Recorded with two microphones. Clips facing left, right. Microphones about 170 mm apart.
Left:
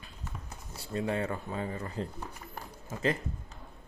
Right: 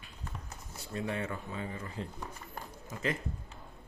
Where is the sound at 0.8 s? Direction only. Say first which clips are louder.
Left 4 dB; 35° left (ahead or behind).